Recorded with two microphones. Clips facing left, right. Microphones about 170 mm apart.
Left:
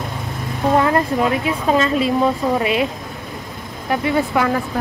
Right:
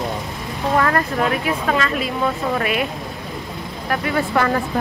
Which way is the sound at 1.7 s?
30° left (ahead or behind).